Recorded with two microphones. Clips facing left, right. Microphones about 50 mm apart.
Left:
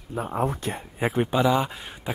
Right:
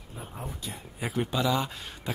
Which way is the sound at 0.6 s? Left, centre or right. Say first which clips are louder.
Left 9 dB; left.